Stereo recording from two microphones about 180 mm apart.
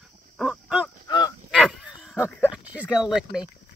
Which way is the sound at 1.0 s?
20° left (ahead or behind).